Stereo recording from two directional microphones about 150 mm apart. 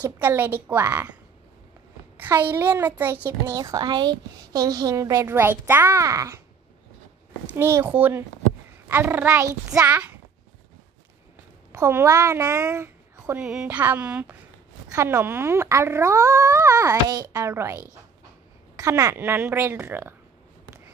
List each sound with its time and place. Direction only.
0.0 s a woman's voice: 15° right (ahead or behind)
2.1 s a woman's voice: 15° right (ahead or behind)
7.4 s a woman's voice: 15° right (ahead or behind)
11.7 s a woman's voice: 20° right (ahead or behind)